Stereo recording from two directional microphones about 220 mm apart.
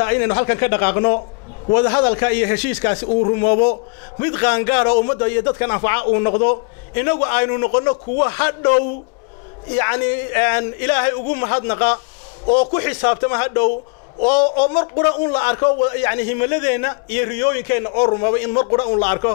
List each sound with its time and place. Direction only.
0.0 s a man's voice: 15° left (ahead or behind)
15.0 s speech: 20° left (ahead or behind)
15.3 s a man's voice: 10° left (ahead or behind)